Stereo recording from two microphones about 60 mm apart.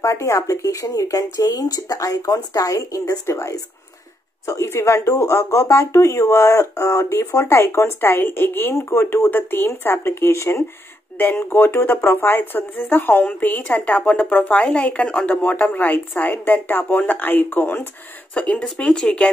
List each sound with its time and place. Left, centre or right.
0.0 s speech: left
3.3 s speech: left
11.1 s speech: left
18.3 s speech: left